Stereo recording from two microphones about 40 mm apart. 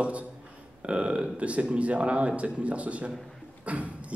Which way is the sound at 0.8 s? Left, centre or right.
Right.